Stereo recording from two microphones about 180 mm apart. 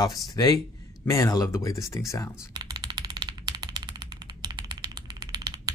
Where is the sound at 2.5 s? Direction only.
25° right (ahead or behind).